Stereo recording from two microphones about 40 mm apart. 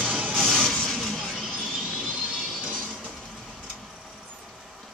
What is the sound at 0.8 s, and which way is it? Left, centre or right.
Vehicle, centre.